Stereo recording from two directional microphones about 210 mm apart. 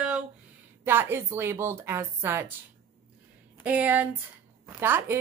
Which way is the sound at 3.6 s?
10° right (ahead or behind).